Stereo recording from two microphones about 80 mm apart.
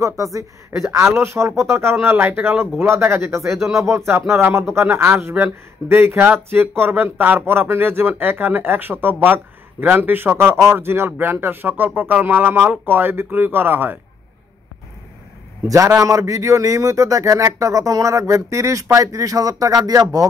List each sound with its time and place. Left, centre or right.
0.0 s speech: right
0.9 s speech: right
15.7 s speech: right